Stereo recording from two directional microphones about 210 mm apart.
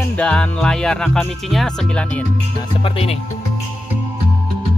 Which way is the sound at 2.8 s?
30° left (ahead or behind).